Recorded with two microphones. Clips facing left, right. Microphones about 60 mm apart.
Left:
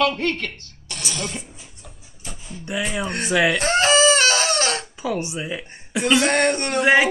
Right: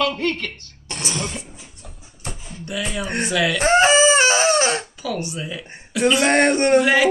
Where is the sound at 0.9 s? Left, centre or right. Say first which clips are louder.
Right 3 dB; right.